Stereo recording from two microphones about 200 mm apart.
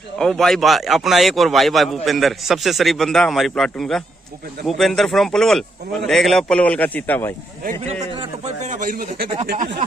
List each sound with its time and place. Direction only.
0.2 s speech: 5° left (ahead or behind)
7.8 s a man's voice: 30° right (ahead or behind)
8.7 s a man's voice: 45° right (ahead or behind)